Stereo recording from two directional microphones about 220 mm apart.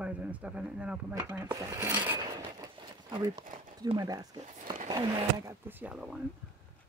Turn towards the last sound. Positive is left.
turn(degrees=-5)  # may be behind; listen again after turning